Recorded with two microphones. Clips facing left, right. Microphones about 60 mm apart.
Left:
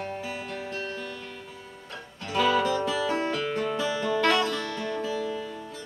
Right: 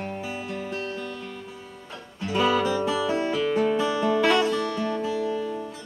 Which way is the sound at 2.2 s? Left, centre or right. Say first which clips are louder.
Right 1 dB; centre.